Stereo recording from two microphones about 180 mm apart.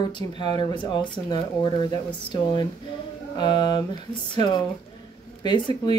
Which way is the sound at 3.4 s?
25° left (ahead or behind).